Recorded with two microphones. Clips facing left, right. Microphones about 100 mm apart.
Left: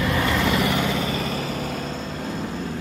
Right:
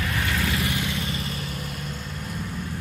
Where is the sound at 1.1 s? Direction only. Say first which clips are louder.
Left 6 dB; 90° left.